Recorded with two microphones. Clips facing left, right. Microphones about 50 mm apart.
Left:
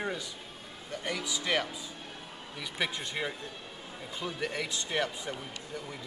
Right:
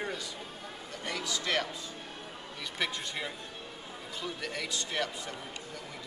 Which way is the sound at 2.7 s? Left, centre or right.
Centre.